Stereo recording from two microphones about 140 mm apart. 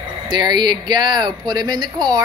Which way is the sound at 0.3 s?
30° right (ahead or behind).